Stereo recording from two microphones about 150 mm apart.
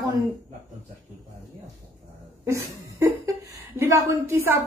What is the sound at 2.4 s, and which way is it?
A woman's voice, 20° right (ahead or behind).